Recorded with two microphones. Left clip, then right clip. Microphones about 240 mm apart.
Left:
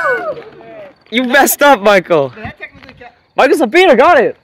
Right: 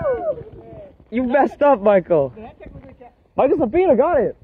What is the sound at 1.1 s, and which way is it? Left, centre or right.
Speech, left.